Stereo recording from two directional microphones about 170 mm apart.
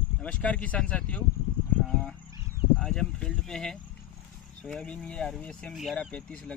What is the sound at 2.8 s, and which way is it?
Speech, 5° left (ahead or behind).